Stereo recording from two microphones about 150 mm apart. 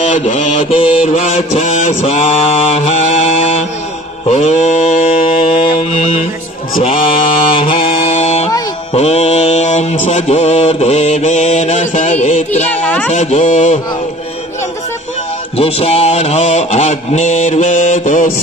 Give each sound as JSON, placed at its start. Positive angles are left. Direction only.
{"t": 0.0, "sound": "mantra", "side_deg": 55}
{"t": 1.9, "sound": "mantra", "side_deg": 50}
{"t": 4.3, "sound": "mantra", "side_deg": 50}
{"t": 8.1, "sound": "music", "side_deg": 50}
{"t": 8.9, "sound": "mantra", "side_deg": 45}
{"t": 12.8, "sound": "speech", "side_deg": 10}
{"t": 13.1, "sound": "mantra", "side_deg": 50}
{"t": 15.5, "sound": "mantra", "side_deg": 40}